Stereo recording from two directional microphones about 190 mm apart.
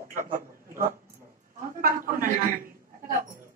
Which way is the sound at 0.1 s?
45° right (ahead or behind).